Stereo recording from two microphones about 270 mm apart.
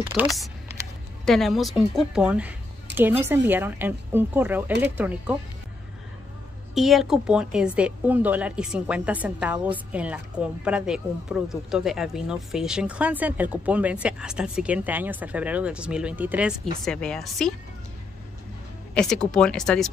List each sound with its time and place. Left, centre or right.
0.1 s a woman's voice: centre
6.7 s a woman's voice: centre
18.9 s a woman's voice: centre